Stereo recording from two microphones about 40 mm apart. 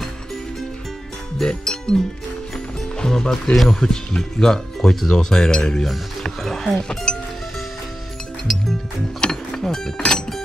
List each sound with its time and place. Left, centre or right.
1.4 s speech: centre
2.5 s music: centre
3.6 s speech: centre
6.4 s speech: centre
6.8 s speech: centre
9.2 s mechanisms: centre